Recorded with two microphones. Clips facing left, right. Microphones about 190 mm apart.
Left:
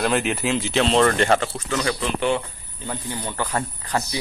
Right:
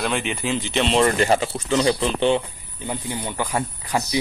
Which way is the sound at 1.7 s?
20° right (ahead or behind).